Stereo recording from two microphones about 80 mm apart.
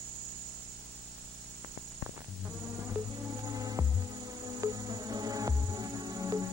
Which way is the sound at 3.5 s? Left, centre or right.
Right.